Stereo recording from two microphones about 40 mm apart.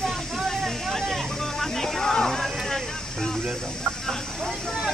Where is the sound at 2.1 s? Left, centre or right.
Centre.